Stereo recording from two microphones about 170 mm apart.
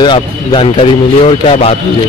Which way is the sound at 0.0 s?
25° left (ahead or behind).